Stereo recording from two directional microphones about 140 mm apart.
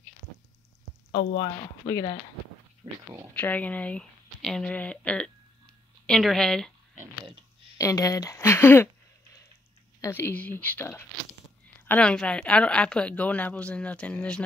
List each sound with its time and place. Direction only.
1.1 s speech: 40° left (ahead or behind)
3.3 s a woman's voice: 10° left (ahead or behind)
7.7 s speech: 25° left (ahead or behind)
10.0 s speech: 15° left (ahead or behind)